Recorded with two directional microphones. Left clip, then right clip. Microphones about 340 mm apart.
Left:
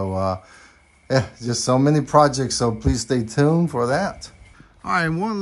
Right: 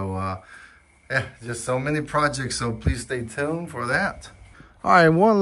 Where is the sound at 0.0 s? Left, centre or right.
Centre.